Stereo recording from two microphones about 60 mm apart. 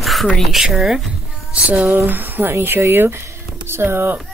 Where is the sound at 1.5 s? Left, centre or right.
Right.